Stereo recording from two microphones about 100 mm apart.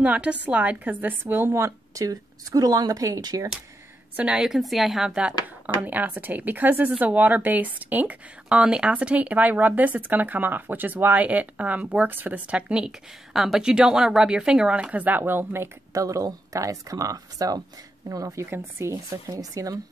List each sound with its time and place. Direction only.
0.0 s a woman's voice: 15° right (ahead or behind); by 3.4 s 40° right (ahead or behind)
4.2 s a woman's voice: 10° right (ahead or behind); by 19.8 s 35° right (ahead or behind)